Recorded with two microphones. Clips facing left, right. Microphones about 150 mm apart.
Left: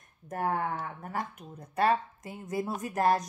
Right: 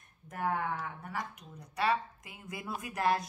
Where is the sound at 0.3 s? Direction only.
40° left (ahead or behind).